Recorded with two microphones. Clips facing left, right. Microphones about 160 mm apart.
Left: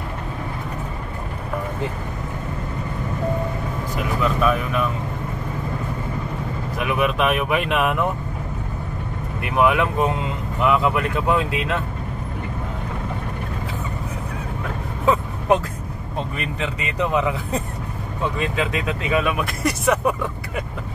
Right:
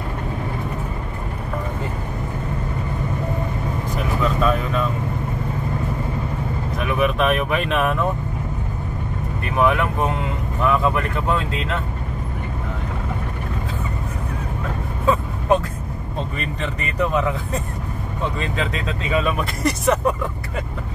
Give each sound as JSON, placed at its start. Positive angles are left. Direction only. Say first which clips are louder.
{"t": 4.4, "sound": "speech", "louder": "even", "side_deg": 10}
{"t": 6.8, "sound": "speech", "louder": "right 1 dB", "side_deg": 10}
{"t": 9.4, "sound": "speech", "louder": "left 1 dB", "side_deg": 15}
{"t": 15.0, "sound": "vehicle", "louder": "even", "side_deg": 15}
{"t": 16.3, "sound": "speech", "louder": "even", "side_deg": 5}